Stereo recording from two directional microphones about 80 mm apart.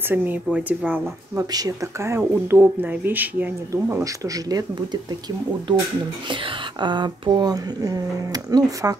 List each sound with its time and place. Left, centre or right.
0.1 s speech: right
1.3 s speech: right
2.0 s speech: right
2.3 s speech: right
3.7 s speech: right
6.2 s speech: right